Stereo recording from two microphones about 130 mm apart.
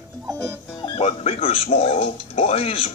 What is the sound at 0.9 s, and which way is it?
Speech, 45° left (ahead or behind).